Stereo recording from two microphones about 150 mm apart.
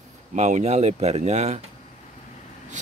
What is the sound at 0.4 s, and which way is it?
Speech, 50° right (ahead or behind).